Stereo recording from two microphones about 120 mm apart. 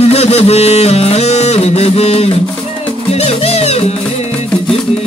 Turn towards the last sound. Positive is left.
turn(degrees=60)  # may be behind; listen again after turning